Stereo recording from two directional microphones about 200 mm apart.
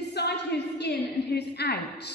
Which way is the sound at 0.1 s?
55° left (ahead or behind).